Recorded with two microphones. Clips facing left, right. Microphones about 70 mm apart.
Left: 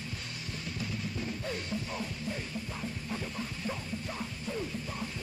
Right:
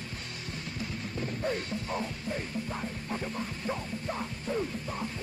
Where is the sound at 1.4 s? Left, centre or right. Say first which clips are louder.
Right 4 dB; right.